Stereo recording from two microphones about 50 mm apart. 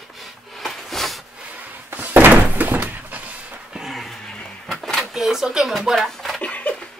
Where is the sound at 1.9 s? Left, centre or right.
Right.